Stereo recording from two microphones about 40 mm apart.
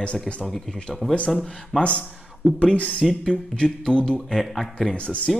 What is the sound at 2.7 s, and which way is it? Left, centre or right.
Speech, left.